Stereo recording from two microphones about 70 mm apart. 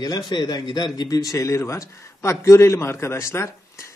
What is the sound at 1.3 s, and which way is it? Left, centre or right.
A man's voice, left.